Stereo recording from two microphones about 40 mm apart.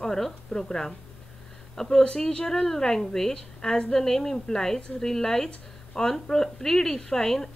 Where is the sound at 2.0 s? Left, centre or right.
Left.